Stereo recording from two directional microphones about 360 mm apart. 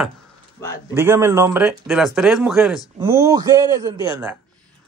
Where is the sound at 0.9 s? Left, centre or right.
Centre.